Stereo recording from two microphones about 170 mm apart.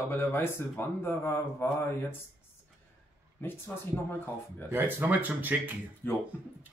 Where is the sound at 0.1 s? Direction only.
10° left (ahead or behind).